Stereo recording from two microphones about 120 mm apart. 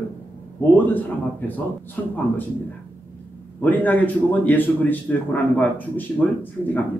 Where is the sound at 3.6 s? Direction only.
15° left (ahead or behind).